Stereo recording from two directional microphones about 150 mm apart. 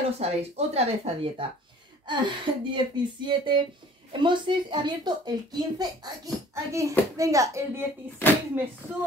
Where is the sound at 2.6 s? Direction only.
30° right (ahead or behind).